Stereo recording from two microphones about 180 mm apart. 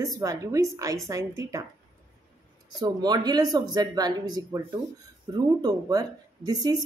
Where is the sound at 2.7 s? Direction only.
20° right (ahead or behind).